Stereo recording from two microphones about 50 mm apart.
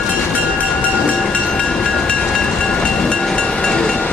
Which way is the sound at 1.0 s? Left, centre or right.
Left.